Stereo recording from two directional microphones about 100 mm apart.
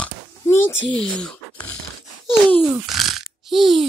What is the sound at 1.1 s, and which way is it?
Speech, 15° left (ahead or behind).